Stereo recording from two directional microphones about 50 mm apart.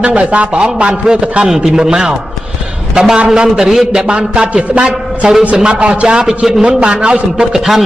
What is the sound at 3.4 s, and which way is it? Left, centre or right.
A man's voice, centre.